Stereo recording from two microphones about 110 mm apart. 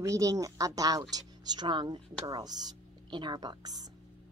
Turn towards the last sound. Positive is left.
turn(degrees=-35)  # may be behind; listen again after turning